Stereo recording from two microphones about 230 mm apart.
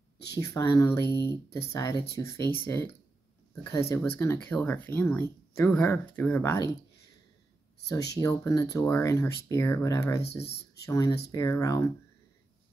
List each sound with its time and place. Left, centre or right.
0.3 s speech: centre
1.0 s speech: centre
1.3 s speech: centre
3.9 s speech: centre
8.1 s speech: centre
10.4 s speech: left
10.9 s speech: centre